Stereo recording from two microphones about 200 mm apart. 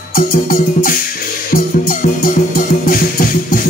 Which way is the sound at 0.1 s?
45° left (ahead or behind).